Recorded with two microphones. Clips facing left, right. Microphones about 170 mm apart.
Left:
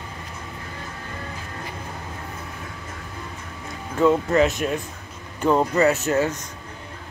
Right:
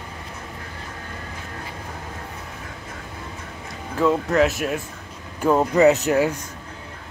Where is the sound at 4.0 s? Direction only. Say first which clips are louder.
Left 1 dB; centre (ahead or behind).